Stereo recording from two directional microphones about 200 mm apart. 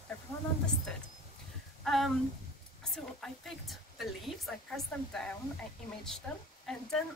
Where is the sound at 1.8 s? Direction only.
Centre (ahead or behind).